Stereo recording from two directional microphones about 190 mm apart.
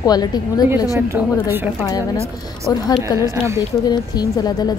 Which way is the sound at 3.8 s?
20° left (ahead or behind).